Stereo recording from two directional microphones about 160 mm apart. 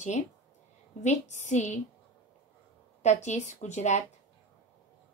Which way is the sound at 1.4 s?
50° left (ahead or behind).